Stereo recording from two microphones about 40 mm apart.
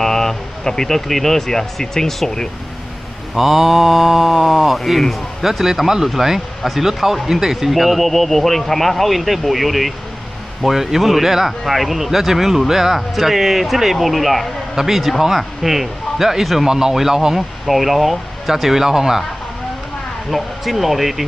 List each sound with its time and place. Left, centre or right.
0.0 s speech: centre
3.3 s speech: centre
20.2 s speech: centre